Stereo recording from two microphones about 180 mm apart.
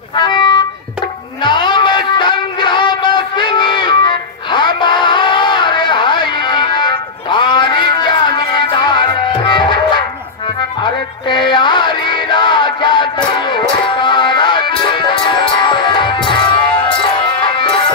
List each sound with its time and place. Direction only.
0.1 s music: 25° left (ahead or behind)
1.4 s a sound: 25° left (ahead or behind)
10.8 s music: 25° left (ahead or behind)
17.6 s music: 30° left (ahead or behind)